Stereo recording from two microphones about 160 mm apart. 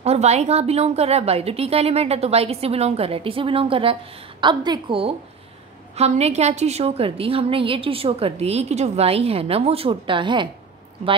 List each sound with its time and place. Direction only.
0.0 s a woman's voice: 40° right (ahead or behind)